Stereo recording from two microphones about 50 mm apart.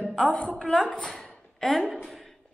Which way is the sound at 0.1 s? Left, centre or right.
Centre.